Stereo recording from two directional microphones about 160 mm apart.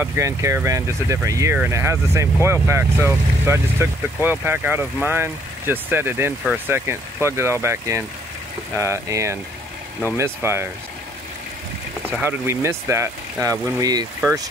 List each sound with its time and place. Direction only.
0.0 s speech: 15° right (ahead or behind)
12.2 s speech: 15° right (ahead or behind)